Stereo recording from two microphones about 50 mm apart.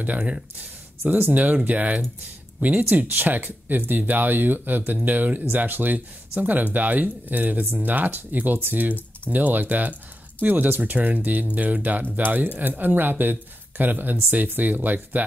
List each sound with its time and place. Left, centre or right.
0.0 s speech: right